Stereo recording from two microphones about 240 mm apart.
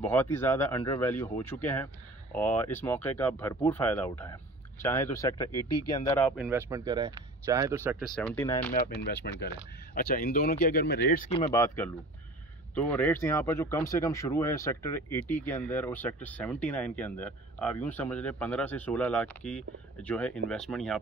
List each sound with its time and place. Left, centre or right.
0.0 s speech: centre
6.5 s speech: centre
8.2 s speech: centre
9.1 s speech: left
11.2 s speech: left
11.6 s speech: centre